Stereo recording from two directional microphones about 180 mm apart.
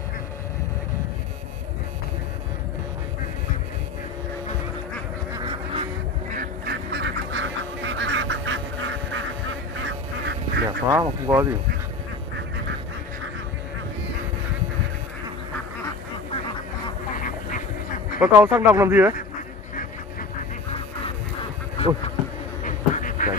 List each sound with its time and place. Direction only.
5.3 s duck: 25° right (ahead or behind)
6.3 s duck: 60° right (ahead or behind); by 9.2 s 90° right
9.8 s duck: 75° right (ahead or behind)
10.9 s speech: 15° right (ahead or behind)
17.1 s duck: 45° left (ahead or behind)
18.2 s speech: 10° right (ahead or behind)
21.7 s insect: 35° left (ahead or behind)
22.6 s duck: 45° left (ahead or behind)